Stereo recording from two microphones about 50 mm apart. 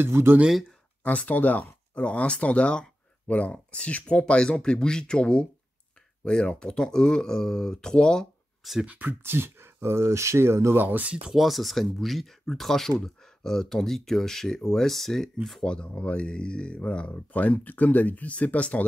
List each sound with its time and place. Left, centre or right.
0.0 s speech: right
1.0 s speech: left; by 8.3 s centre
8.8 s speech: right
9.2 s speech: right
11.2 s speech: centre
15.6 s speech: centre